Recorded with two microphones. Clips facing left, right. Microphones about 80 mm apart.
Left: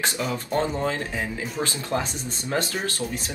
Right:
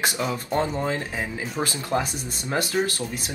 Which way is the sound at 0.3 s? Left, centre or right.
Right.